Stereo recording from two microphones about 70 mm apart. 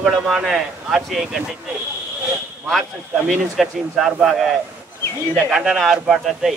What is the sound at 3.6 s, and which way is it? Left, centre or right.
Speech, centre.